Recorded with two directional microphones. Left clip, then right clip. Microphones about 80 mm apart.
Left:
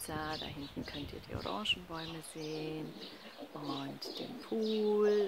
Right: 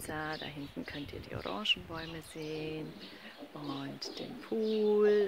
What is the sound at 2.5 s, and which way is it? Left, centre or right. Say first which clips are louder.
Speech: right 1 dB; centre.